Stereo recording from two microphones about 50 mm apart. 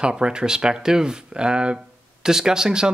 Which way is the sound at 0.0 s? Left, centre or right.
Centre.